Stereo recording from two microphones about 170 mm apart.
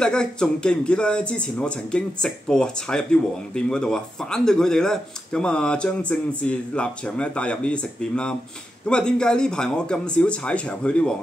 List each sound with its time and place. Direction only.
0.0 s speech: 5° left (ahead or behind)